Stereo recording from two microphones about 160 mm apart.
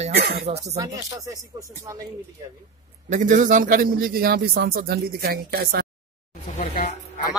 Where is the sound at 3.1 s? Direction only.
50° right (ahead or behind); by 5.8 s 80° right.